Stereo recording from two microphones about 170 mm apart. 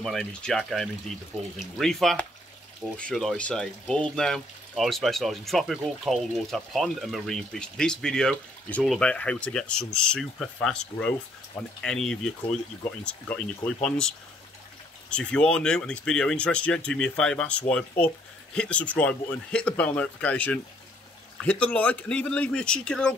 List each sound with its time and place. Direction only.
0.0 s speech: 5° left (ahead or behind)